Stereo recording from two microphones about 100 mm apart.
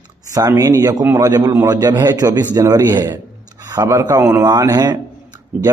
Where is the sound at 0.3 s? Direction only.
35° right (ahead or behind).